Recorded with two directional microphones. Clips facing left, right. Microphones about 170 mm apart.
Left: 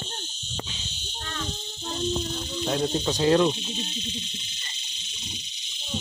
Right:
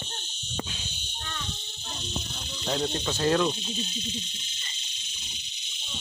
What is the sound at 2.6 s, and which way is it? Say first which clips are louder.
Cricket: left 3 dB; 5° left (ahead or behind).